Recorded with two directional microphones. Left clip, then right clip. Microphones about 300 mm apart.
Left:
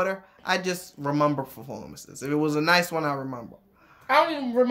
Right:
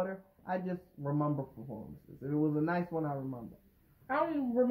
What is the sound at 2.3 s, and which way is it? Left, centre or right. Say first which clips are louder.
Speech: left 11 dB; left.